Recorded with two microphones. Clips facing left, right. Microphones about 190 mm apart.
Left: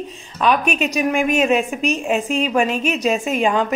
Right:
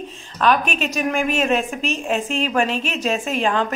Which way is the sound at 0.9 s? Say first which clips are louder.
Left 3 dB; 5° left (ahead or behind).